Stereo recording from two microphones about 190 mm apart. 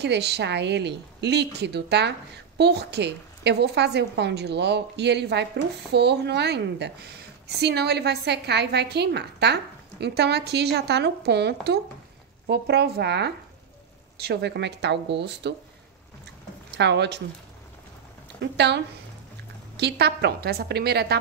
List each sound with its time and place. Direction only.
0.0 s a woman's voice: 60° right (ahead or behind)
16.7 s a woman's voice: 60° right (ahead or behind)
19.8 s a woman's voice: 60° right (ahead or behind)